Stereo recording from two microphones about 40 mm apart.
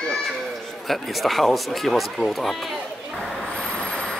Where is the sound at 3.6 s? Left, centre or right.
Left.